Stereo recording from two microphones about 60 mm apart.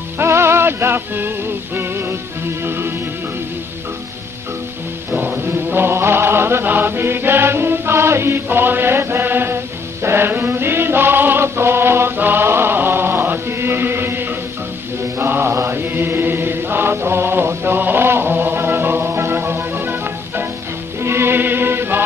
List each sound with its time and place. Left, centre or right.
0.2 s music: right
5.2 s mantra: right
5.8 s music: right
10.0 s chant: right
15.1 s mantra: right
21.0 s music: right